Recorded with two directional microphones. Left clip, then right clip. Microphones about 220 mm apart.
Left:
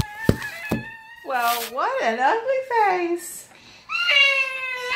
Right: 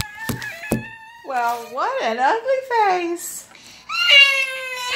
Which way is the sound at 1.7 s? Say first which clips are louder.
Right 1 dB; 5° left (ahead or behind).